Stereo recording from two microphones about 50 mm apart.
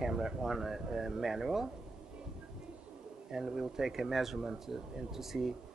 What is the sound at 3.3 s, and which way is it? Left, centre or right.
Speech, centre.